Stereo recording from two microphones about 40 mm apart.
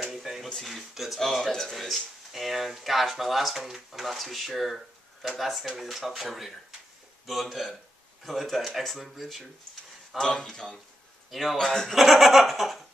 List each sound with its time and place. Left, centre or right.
0.0 s a sound: centre
0.7 s speech: centre
1.3 s speech: centre
10.1 s speech: centre
11.2 s speech: centre
11.5 s speech: centre
11.9 s speech: centre